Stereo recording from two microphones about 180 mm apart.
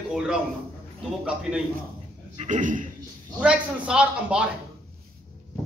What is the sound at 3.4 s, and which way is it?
A man's voice, 5° right (ahead or behind).